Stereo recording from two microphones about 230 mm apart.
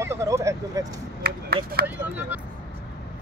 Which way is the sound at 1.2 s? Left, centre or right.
Right.